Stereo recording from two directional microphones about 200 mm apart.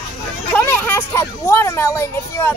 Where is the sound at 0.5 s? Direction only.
10° left (ahead or behind).